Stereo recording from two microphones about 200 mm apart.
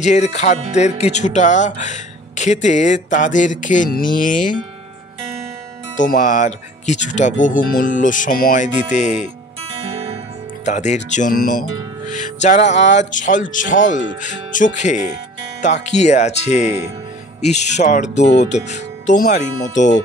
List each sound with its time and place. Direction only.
0.0 s speech: 35° left (ahead or behind)
5.9 s speech: 40° left (ahead or behind)
9.8 s music: 30° right (ahead or behind)
10.6 s speech: 35° left (ahead or behind)
18.2 s speech: 60° left (ahead or behind)
19.1 s speech: 40° left (ahead or behind)